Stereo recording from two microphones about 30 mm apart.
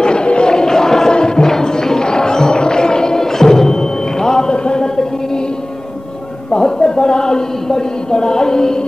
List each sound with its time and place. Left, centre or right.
0.0 s a sound: left
1.1 s music: left
6.5 s a woman's voice: left